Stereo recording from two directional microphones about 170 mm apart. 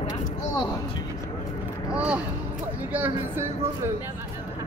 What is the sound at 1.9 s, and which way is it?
Speech, 5° right (ahead or behind).